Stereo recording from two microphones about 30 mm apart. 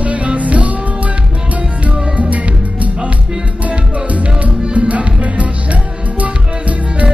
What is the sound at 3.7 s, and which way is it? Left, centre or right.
Music, right.